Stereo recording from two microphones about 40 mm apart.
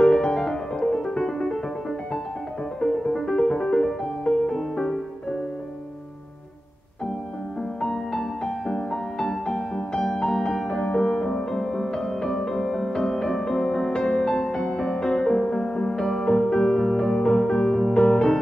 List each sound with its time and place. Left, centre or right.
0.0 s music: centre
2.8 s music: centre
7.8 s music: centre
10.8 s music: left